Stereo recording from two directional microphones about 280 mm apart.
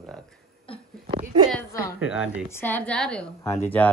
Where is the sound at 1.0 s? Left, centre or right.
Centre.